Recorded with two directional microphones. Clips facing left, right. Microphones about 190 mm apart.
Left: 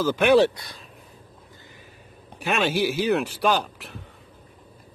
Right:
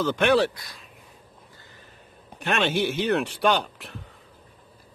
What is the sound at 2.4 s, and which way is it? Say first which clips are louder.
Speech: left 1 dB; centre (ahead or behind).